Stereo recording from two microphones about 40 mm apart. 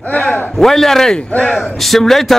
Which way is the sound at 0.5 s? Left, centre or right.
Centre.